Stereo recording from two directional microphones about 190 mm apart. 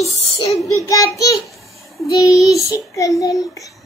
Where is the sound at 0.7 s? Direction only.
20° left (ahead or behind).